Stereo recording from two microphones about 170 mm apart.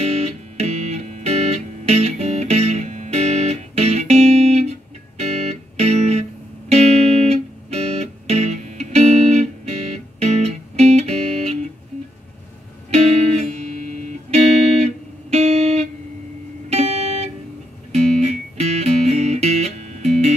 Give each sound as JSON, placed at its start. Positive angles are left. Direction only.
{"t": 0.0, "sound": "music", "side_deg": -40}
{"t": 12.9, "sound": "music", "side_deg": -40}